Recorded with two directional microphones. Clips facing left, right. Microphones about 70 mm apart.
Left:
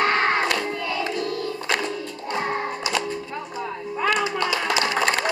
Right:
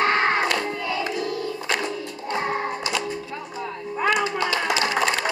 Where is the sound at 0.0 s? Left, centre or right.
Centre.